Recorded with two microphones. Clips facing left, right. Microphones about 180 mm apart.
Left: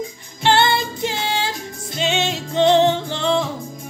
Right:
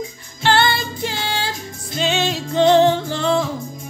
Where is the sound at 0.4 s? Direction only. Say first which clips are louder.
Left 1 dB; 20° left (ahead or behind).